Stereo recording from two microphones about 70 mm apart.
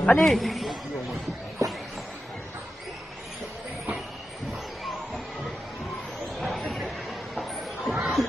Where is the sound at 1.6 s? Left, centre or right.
Right.